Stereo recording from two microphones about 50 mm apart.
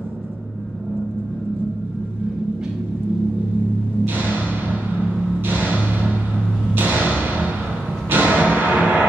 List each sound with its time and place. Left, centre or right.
4.0 s music: right
6.7 s thump: right
8.1 s music: right